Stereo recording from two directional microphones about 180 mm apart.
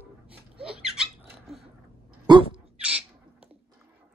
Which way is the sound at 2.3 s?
25° right (ahead or behind).